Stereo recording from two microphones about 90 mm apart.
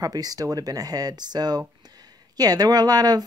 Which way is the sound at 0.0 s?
45° right (ahead or behind).